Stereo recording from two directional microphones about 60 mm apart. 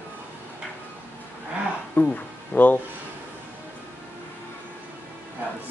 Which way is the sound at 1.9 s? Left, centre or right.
Left.